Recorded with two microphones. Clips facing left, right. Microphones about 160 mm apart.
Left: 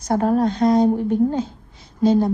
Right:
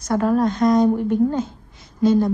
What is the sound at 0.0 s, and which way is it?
Speech, 50° left (ahead or behind).